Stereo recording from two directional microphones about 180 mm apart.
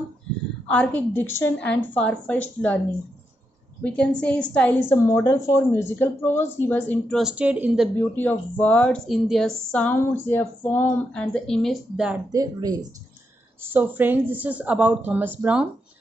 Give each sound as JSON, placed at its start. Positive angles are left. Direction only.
{"t": 0.7, "sound": "a woman's voice", "side_deg": 5}
{"t": 3.8, "sound": "a woman's voice", "side_deg": 5}
{"t": 8.2, "sound": "speech", "side_deg": 10}
{"t": 12.3, "sound": "speech", "side_deg": -20}
{"t": 13.6, "sound": "speech", "side_deg": -10}